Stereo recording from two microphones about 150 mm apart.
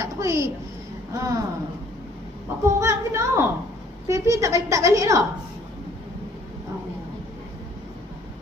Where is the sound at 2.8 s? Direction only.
20° right (ahead or behind).